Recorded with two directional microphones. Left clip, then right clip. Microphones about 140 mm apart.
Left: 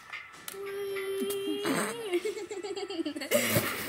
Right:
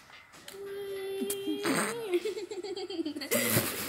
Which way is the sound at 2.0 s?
45° left (ahead or behind).